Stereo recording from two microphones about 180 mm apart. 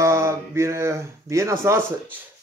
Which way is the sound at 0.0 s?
15° right (ahead or behind).